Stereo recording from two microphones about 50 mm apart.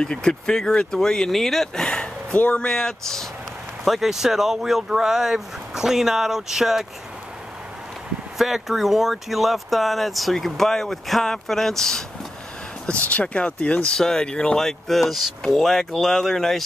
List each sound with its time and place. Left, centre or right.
0.0 s speech: centre
2.3 s speech: left
2.6 s speech: centre
3.8 s speech: centre
8.4 s speech: centre
12.8 s speech: left
13.9 s speech: centre